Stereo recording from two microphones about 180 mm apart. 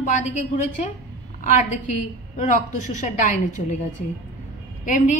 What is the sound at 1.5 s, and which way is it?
A woman's voice, 45° left (ahead or behind).